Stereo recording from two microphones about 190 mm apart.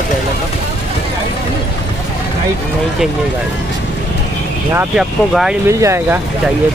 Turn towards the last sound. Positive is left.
turn(degrees=-15)  # may be behind; listen again after turning